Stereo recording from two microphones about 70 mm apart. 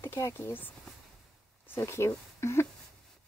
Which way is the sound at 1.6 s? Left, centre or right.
Left.